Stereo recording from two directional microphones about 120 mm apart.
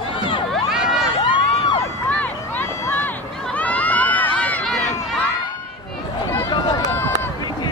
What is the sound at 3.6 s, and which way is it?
Crowd, 10° left (ahead or behind).